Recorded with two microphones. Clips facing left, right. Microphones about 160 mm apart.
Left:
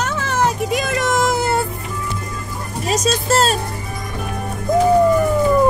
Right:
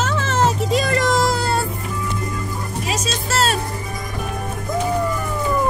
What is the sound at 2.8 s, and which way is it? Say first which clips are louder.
Speech: left 8 dB; 40° left (ahead or behind).